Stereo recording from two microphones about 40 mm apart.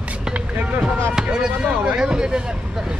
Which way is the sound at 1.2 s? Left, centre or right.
Centre.